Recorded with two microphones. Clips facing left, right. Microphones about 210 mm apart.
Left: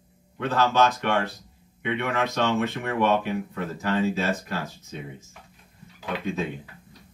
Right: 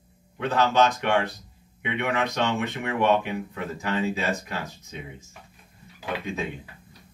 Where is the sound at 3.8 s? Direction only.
15° right (ahead or behind).